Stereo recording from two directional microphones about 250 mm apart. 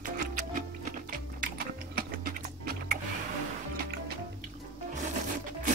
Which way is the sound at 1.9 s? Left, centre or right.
Right.